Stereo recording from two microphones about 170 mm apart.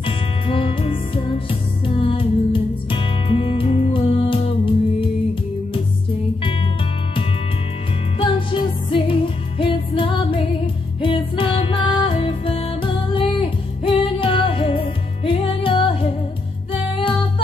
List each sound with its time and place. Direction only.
0.0 s music: 35° left (ahead or behind)
8.2 s music: 30° left (ahead or behind)